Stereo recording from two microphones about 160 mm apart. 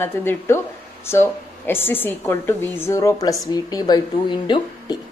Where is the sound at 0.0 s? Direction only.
15° left (ahead or behind).